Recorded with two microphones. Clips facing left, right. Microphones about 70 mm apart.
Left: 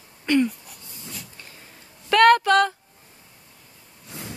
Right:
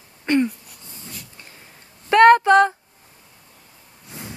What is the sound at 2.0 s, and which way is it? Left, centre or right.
Female singing, right.